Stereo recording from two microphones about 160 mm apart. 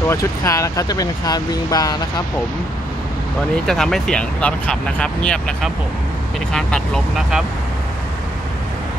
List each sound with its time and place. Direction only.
0.1 s speech: 20° left (ahead or behind)
3.6 s speech: centre (ahead or behind)